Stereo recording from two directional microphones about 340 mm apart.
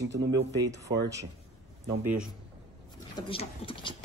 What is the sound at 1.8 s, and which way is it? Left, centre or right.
Speech, centre.